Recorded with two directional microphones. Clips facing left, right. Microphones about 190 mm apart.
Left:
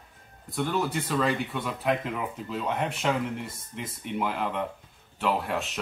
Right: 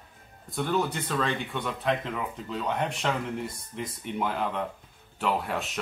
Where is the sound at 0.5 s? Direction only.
Centre (ahead or behind).